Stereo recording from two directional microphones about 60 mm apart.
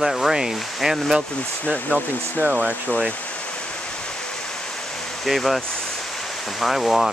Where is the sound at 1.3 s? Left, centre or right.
Left.